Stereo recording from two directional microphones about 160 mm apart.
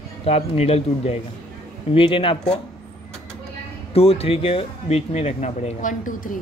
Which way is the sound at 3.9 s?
40° left (ahead or behind).